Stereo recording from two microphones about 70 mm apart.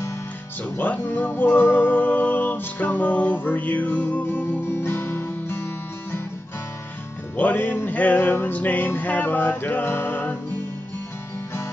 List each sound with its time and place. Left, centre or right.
0.7 s music: left
7.3 s music: left